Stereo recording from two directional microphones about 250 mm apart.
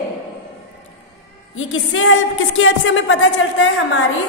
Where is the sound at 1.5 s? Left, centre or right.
Left.